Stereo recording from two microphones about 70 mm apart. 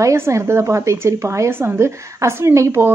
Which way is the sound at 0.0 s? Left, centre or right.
Right.